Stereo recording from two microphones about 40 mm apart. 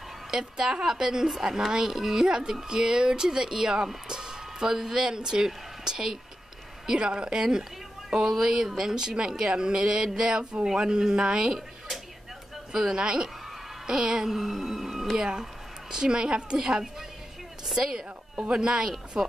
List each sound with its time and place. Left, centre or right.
0.3 s a woman's voice: centre
12.7 s a woman's voice: centre
14.4 s a woman's voice: centre